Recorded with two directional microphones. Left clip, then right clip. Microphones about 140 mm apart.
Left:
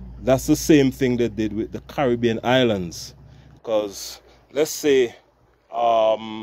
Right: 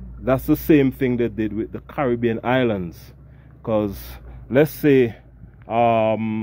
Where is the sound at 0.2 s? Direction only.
20° left (ahead or behind).